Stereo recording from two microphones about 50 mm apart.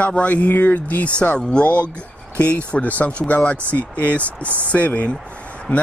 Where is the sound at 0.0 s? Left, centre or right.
Left.